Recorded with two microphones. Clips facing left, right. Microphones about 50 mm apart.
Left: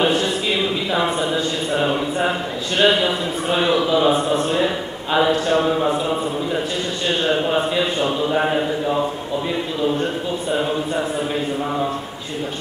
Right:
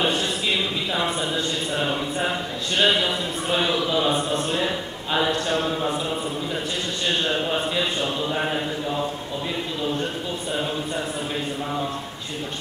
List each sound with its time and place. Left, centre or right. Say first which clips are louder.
0.9 s a sound: left 5 dB; centre
2.8 s a man's voice: left 4 dB; centre
7.2 s a man's voice: left 5 dB; centre